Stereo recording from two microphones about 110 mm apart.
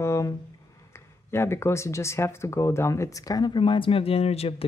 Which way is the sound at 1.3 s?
25° left (ahead or behind).